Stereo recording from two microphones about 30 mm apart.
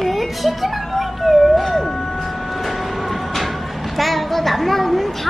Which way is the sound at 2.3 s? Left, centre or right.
Centre.